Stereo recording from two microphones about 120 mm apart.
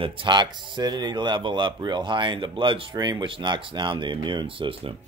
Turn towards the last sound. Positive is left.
turn(degrees=-45)  # may be behind; listen again after turning